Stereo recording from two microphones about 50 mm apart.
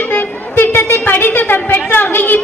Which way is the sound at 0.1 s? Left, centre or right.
Left.